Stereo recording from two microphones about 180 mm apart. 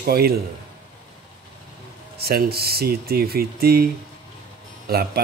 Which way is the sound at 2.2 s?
60° right (ahead or behind).